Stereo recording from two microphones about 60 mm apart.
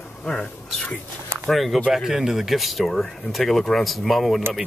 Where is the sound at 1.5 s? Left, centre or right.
Centre.